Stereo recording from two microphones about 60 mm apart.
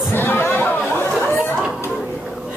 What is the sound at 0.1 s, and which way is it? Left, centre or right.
Chatter, left.